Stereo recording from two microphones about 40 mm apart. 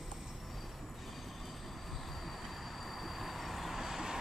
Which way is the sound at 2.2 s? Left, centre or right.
Centre.